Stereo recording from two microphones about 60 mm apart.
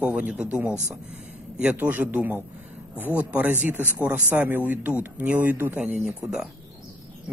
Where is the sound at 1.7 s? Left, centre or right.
Right.